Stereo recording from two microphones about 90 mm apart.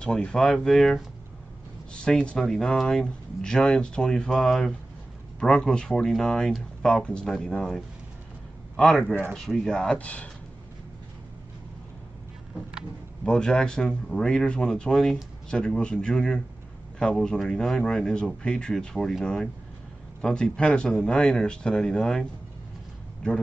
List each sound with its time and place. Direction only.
0.0 s a man's voice: 10° left (ahead or behind)
9.0 s speech: 20° right (ahead or behind)
9.3 s speech: 5° left (ahead or behind)
13.2 s speech: 10° left (ahead or behind)